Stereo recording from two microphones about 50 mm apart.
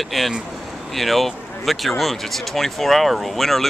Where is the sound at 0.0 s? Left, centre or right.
Centre.